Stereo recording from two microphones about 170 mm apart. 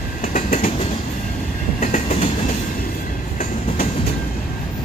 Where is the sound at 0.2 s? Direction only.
45° left (ahead or behind).